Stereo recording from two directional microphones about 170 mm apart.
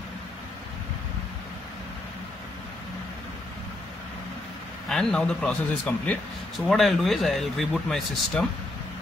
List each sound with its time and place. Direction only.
4.8 s speech: 5° left (ahead or behind)